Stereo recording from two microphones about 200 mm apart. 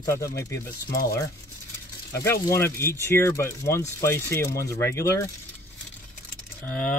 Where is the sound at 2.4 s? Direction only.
15° left (ahead or behind).